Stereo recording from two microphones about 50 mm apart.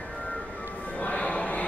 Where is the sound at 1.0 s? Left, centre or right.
Left.